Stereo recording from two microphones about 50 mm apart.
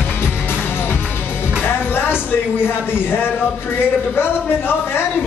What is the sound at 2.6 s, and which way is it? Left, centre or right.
A man's voice, left.